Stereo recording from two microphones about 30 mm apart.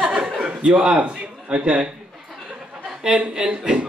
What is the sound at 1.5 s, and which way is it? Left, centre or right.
Speech, right.